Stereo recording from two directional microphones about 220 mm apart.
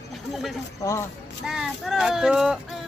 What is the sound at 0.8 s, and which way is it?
Speech, 15° left (ahead or behind).